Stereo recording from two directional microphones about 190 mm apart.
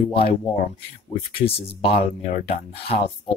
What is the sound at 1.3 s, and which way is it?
Speech, 30° left (ahead or behind).